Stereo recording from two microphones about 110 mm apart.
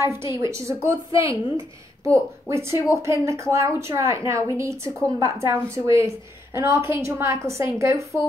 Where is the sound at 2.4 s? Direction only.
25° right (ahead or behind).